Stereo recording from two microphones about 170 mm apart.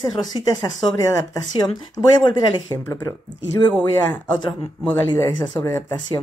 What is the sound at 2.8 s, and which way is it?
Speech, 15° left (ahead or behind).